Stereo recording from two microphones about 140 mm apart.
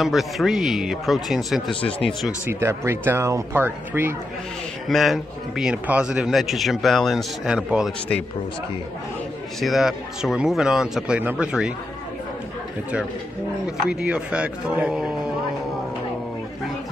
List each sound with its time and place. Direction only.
0.0 s a man's voice: centre (ahead or behind)
1.7 s speech: 40° left (ahead or behind)
2.0 s a man's voice: centre (ahead or behind)
2.4 s speech: 20° right (ahead or behind)
4.8 s a man's voice: centre (ahead or behind)
9.6 s a man's voice: centre (ahead or behind)
13.8 s speech: 5° right (ahead or behind)